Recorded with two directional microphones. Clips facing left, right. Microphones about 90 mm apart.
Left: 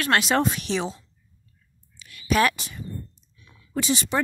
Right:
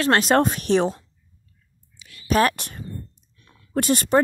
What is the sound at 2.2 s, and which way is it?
Speech, 40° right (ahead or behind).